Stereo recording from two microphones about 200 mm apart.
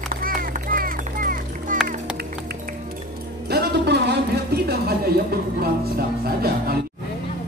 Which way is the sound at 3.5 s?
55° right (ahead or behind).